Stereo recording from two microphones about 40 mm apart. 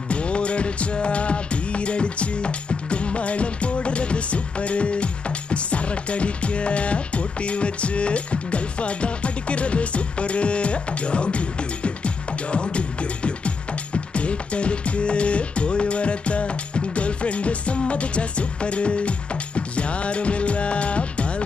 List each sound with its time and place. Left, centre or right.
0.1 s music: left